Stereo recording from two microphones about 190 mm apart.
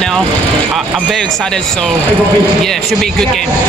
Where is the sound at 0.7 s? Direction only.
Centre (ahead or behind).